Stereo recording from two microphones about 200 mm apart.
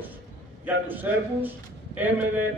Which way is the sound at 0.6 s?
10° right (ahead or behind).